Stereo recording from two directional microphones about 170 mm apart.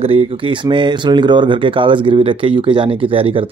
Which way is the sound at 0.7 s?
25° right (ahead or behind).